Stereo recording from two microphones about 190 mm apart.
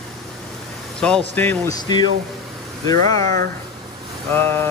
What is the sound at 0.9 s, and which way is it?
Speech, 5° left (ahead or behind).